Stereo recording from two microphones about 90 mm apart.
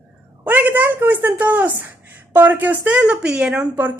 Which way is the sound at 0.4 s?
20° right (ahead or behind).